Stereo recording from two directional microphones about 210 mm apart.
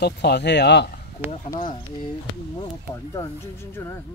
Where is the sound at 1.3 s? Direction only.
40° left (ahead or behind).